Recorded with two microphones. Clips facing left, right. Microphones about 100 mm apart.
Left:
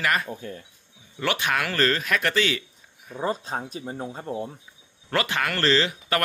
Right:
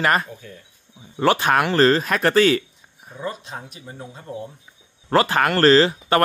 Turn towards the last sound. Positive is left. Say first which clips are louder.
# right 8 dB
turn(degrees=-40)  # may be behind; listen again after turning